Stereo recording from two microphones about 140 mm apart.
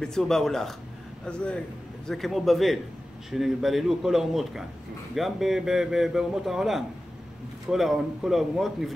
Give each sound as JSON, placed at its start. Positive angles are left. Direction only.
{"t": 0.0, "sound": "a man's voice", "side_deg": 5}